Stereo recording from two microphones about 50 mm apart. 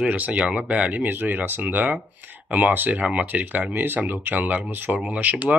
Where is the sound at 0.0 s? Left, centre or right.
Right.